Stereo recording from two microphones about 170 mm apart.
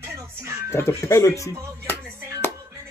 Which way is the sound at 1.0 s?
15° left (ahead or behind).